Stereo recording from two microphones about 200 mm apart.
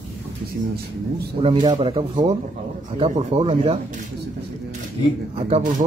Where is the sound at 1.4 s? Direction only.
25° right (ahead or behind).